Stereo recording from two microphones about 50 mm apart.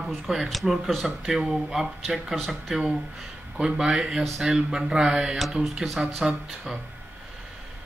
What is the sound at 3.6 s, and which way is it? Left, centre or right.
Speech, centre.